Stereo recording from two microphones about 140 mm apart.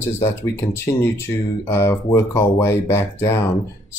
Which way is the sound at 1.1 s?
15° left (ahead or behind).